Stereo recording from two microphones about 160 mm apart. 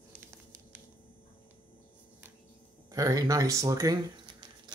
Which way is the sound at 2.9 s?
20° right (ahead or behind).